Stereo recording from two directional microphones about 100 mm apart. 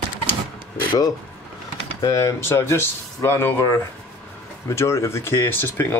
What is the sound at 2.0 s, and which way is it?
Speech, 35° left (ahead or behind).